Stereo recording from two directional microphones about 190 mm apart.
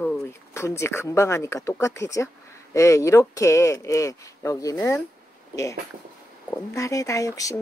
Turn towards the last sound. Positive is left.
turn(degrees=15)  # may be behind; listen again after turning